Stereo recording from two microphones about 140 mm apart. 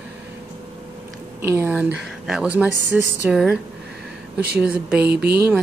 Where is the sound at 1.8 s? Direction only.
5° right (ahead or behind).